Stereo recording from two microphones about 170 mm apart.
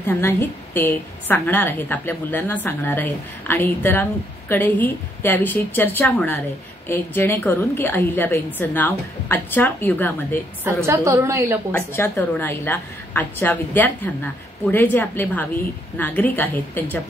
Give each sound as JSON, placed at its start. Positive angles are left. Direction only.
{"t": 0.2, "sound": "a woman's voice", "side_deg": 15}
{"t": 10.6, "sound": "a woman's voice", "side_deg": -15}
{"t": 11.7, "sound": "a woman's voice", "side_deg": 10}